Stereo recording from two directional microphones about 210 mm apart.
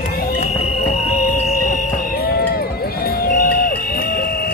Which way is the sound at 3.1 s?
45° left (ahead or behind).